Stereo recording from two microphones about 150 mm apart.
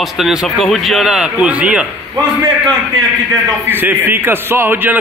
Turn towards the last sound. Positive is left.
turn(degrees=-15)  # may be behind; listen again after turning